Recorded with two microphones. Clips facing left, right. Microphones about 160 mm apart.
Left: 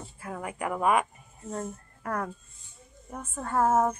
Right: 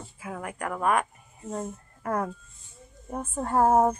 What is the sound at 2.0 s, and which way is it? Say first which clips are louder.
Speech: right 4 dB; 20° right (ahead or behind).